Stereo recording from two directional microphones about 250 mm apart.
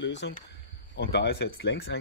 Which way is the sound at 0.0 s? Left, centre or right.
Left.